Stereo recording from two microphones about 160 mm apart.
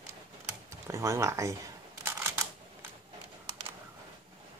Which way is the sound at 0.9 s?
20° right (ahead or behind).